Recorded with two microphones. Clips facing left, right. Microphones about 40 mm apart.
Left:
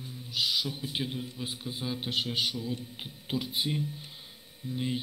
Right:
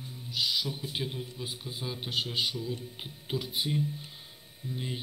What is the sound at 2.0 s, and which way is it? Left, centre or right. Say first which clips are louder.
A man's voice: even; left.